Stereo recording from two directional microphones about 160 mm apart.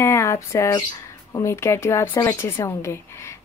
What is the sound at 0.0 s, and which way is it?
Speech, 15° left (ahead or behind).